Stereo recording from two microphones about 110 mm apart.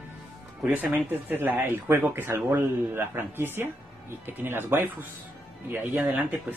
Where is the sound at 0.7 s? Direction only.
15° right (ahead or behind).